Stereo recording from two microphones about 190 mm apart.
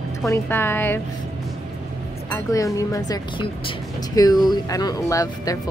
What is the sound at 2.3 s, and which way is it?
Speech, 15° left (ahead or behind).